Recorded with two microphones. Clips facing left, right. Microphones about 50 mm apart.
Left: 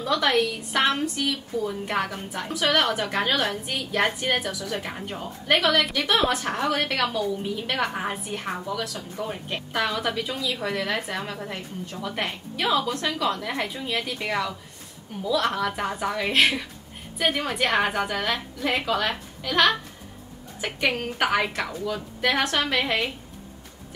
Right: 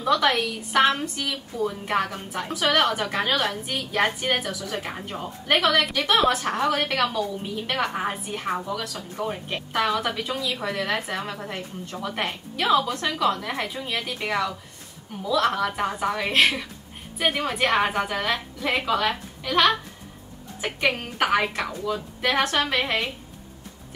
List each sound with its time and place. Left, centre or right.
0.1 s a woman's voice: centre